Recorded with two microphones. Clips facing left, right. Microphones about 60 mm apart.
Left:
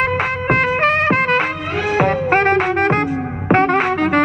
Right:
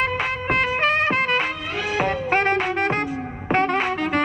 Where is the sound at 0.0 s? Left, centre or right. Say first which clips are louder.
Left 5 dB; left.